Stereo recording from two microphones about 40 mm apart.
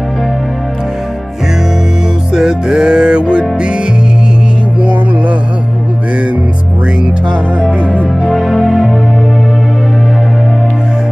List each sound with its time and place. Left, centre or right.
2.3 s music: centre
8.2 s music: centre